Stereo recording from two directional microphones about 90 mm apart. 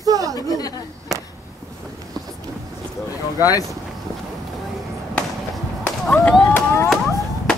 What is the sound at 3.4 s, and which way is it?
Speech, 40° left (ahead or behind).